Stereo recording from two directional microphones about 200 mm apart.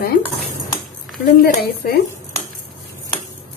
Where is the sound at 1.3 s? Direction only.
45° left (ahead or behind).